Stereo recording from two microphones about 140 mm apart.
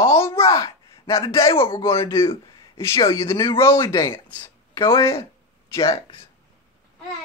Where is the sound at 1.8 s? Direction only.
20° left (ahead or behind).